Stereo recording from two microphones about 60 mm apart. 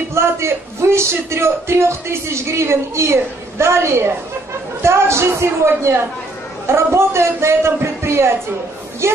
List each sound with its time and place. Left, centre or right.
0.1 s a man's voice: right